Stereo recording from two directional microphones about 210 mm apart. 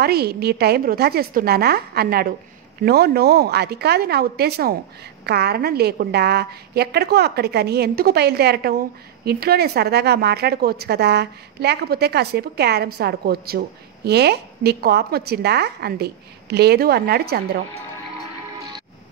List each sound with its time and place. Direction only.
0.0 s a woman's voice: 50° right (ahead or behind)